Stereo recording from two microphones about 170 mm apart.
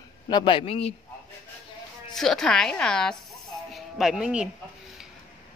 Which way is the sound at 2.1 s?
Centre (ahead or behind).